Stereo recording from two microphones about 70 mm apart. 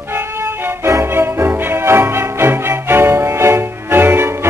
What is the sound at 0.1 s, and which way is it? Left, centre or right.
Music, right.